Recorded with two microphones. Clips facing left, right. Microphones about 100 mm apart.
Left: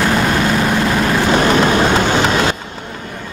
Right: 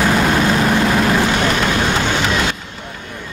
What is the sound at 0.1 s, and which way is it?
Vehicle, centre (ahead or behind).